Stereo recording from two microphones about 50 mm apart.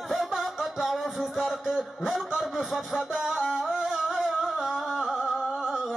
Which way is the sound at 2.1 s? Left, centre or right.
Centre.